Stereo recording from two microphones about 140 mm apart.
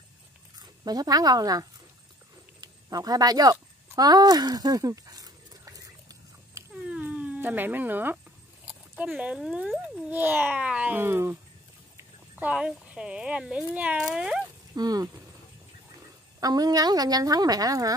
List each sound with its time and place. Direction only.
0.6 s speech: 25° right (ahead or behind)
2.6 s a sound: 25° right (ahead or behind)
6.7 s dog: 10° right (ahead or behind)
8.9 s speech: 10° right (ahead or behind)
12.4 s speech: 10° right (ahead or behind)
14.8 s speech: 30° right (ahead or behind)
16.3 s speech: 25° right (ahead or behind)